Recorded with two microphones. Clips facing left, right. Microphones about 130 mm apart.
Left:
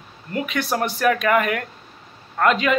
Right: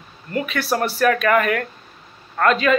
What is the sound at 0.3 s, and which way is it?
Speech, 15° left (ahead or behind).